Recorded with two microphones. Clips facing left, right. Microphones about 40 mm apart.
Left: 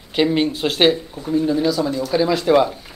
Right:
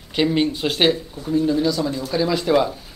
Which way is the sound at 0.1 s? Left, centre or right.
Centre.